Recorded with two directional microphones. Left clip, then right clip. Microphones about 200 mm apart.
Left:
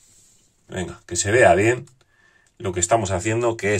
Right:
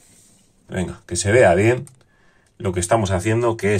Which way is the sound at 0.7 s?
5° left (ahead or behind).